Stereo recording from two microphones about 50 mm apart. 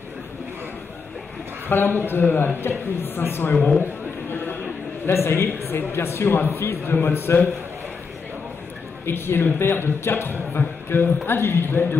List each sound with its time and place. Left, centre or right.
1.7 s a man's voice: left
3.8 s a sound: left
5.0 s a man's voice: left
6.2 s a man's voice: left
9.0 s a man's voice: left